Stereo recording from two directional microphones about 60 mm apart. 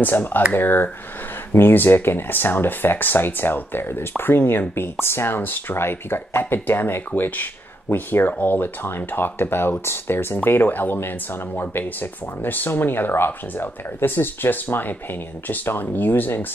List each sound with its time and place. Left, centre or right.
0.0 s speech: left